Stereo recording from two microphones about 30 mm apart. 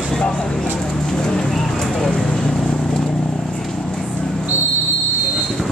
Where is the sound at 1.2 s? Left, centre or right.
Left.